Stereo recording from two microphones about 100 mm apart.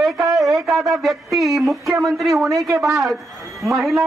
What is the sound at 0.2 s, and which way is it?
A woman's voice, centre (ahead or behind).